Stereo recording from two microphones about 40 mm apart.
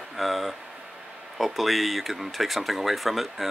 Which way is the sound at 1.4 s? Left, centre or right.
Centre.